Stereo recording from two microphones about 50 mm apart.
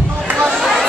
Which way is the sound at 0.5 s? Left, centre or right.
Centre.